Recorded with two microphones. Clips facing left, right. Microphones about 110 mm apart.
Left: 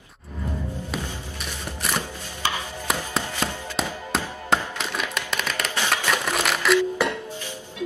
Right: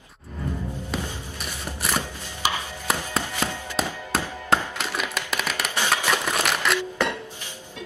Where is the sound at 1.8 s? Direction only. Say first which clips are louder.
Right 1 dB; 5° right (ahead or behind).